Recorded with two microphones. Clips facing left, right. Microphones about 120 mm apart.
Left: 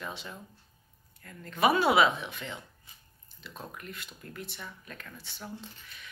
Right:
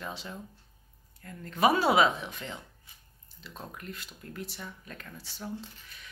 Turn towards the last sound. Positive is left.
turn(degrees=-35)  # may be behind; listen again after turning